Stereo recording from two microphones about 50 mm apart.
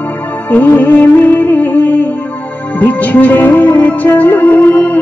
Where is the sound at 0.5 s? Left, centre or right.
Left.